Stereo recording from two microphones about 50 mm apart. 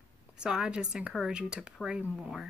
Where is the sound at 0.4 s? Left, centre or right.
Centre.